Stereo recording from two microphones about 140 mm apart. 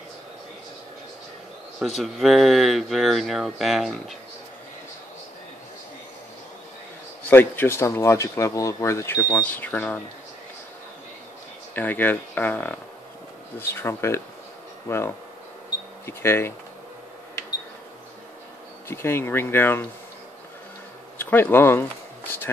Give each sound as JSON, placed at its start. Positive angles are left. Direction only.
{"t": 1.8, "sound": "speech", "side_deg": 0}
{"t": 7.2, "sound": "speech", "side_deg": 15}
{"t": 11.7, "sound": "speech", "side_deg": 15}
{"t": 18.9, "sound": "speech", "side_deg": 15}
{"t": 21.2, "sound": "speech", "side_deg": 15}